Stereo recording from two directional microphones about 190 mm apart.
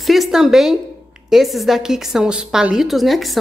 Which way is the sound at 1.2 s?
Centre (ahead or behind).